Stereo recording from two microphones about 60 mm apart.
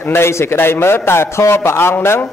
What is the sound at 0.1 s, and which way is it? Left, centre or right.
A man's voice, left.